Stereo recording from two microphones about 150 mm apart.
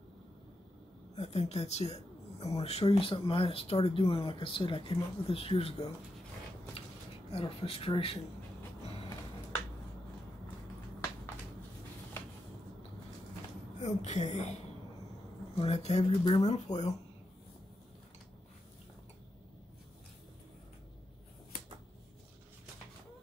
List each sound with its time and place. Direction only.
1.1 s speech: 45° left (ahead or behind)
7.2 s speech: 40° left (ahead or behind)
13.7 s speech: 50° left (ahead or behind)